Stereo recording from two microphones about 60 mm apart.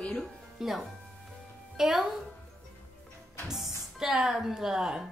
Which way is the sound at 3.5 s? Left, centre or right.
Centre.